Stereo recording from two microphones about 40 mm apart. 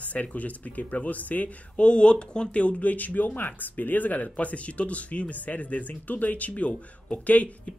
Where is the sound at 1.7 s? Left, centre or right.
Left.